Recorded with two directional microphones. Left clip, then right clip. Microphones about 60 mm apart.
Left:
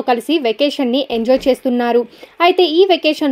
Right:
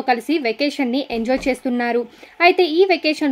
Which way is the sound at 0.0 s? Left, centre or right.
Left.